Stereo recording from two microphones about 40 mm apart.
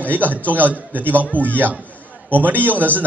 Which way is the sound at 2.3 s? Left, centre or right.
Right.